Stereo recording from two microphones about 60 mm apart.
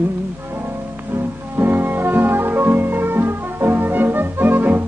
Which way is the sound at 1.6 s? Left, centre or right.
Right.